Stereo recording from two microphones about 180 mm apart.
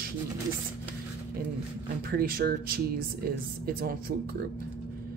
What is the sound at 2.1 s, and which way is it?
Speech, 55° right (ahead or behind).